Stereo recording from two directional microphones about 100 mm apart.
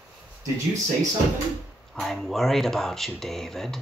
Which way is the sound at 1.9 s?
Centre (ahead or behind).